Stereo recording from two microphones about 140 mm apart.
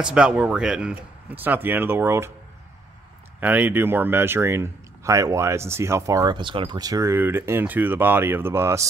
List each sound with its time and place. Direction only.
0.0 s speech: 5° right (ahead or behind)
3.3 s speech: 10° right (ahead or behind)